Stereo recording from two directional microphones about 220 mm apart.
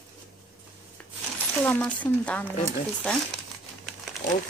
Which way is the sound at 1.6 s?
5° left (ahead or behind).